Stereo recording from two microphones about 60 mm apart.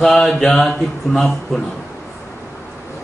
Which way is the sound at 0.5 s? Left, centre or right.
Left.